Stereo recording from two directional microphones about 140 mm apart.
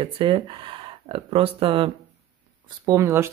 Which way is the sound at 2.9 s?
20° right (ahead or behind).